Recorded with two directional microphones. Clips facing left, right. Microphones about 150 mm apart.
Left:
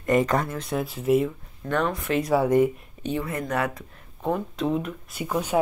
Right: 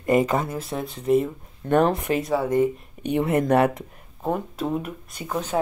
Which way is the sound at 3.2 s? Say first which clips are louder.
Right 9 dB; 25° right (ahead or behind).